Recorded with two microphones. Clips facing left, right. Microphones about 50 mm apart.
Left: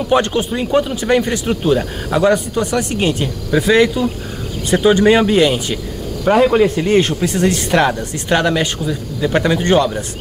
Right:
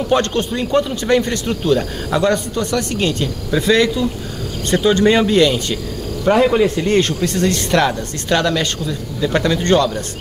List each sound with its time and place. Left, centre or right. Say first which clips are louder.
0.1 s a man's voice: left 2 dB; centre